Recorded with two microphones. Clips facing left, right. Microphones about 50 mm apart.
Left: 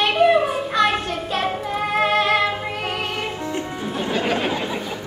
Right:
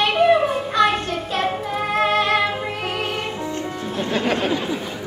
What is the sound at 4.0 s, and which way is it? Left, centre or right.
Music, centre.